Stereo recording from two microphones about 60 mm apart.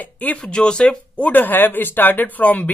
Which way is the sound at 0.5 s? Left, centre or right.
Centre.